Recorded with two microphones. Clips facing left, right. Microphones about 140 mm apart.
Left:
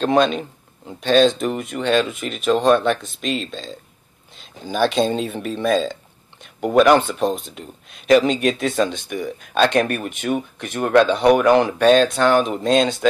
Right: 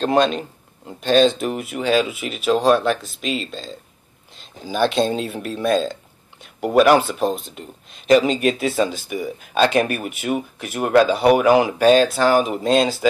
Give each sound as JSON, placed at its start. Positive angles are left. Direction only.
{"t": 0.0, "sound": "speech", "side_deg": 0}